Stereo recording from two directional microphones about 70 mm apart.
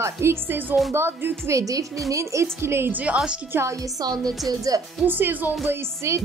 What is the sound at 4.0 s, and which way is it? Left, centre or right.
Speech, right.